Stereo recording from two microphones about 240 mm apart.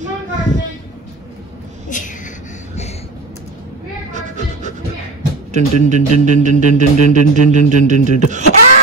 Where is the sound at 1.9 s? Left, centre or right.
Left.